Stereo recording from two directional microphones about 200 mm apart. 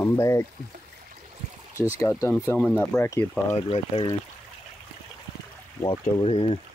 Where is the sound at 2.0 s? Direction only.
15° left (ahead or behind).